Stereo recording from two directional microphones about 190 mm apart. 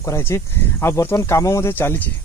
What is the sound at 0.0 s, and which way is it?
Speech, 15° left (ahead or behind).